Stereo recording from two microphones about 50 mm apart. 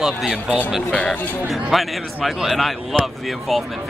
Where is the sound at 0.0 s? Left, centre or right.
Centre.